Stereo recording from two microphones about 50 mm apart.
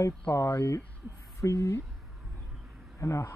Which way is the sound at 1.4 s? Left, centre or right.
Left.